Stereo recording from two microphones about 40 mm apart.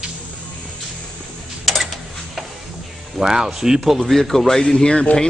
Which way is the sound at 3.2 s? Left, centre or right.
Centre.